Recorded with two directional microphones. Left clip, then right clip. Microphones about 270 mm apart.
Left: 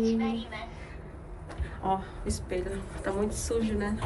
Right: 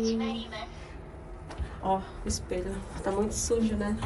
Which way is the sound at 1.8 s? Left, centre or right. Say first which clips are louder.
Right 1 dB; centre.